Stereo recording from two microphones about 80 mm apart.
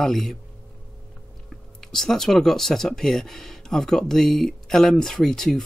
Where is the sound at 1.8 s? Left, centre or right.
Centre.